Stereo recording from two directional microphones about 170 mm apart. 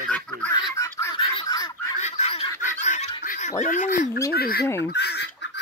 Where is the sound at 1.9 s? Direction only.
40° left (ahead or behind).